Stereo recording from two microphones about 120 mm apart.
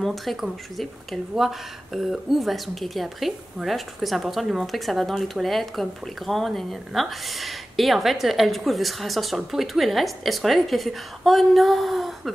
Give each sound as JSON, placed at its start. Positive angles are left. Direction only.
{"t": 0.0, "sound": "speech", "side_deg": 0}